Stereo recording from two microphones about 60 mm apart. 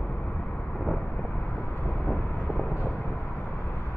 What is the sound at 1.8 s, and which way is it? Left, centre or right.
Vehicle, left.